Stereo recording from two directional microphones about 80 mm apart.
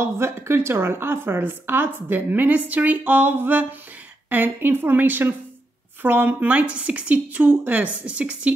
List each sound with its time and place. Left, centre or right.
0.0 s a woman's voice: right; by 8.5 s centre